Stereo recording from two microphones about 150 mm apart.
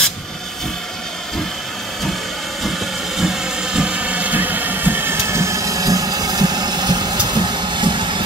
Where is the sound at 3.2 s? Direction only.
5° right (ahead or behind).